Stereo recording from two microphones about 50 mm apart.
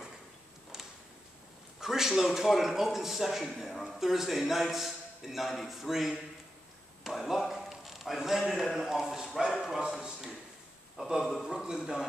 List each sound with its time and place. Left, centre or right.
1.8 s a man's voice: centre